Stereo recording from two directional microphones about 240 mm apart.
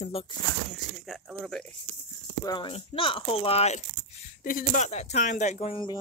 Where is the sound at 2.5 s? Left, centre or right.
Centre.